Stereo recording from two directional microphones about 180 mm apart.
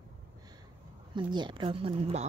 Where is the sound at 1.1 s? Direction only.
25° right (ahead or behind).